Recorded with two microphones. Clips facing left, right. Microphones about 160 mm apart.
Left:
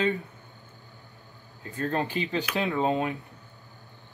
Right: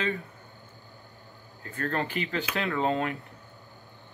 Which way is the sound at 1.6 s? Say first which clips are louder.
Left 2 dB; 20° left (ahead or behind).